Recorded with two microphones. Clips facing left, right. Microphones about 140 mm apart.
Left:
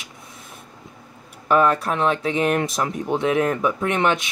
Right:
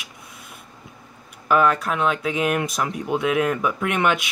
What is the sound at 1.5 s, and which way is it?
Speech, 30° left (ahead or behind).